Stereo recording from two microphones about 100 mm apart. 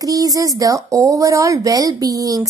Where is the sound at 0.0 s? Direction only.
35° right (ahead or behind).